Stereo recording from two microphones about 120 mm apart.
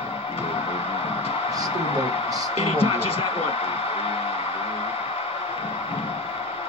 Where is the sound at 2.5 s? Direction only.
55° left (ahead or behind).